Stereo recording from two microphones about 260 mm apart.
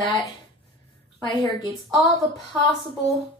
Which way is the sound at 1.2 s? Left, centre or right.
Centre.